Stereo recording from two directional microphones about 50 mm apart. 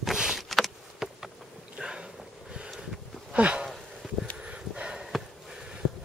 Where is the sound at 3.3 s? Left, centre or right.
Right.